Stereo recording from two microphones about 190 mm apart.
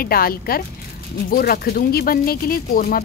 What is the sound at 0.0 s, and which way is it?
Speech, 50° left (ahead or behind).